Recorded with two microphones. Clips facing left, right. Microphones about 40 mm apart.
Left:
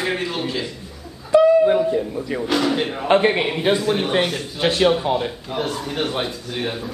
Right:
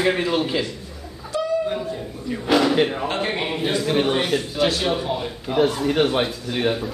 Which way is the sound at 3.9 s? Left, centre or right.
Centre.